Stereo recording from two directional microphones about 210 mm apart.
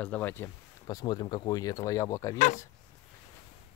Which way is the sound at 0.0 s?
10° left (ahead or behind).